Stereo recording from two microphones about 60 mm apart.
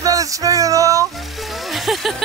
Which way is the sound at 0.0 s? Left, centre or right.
Right.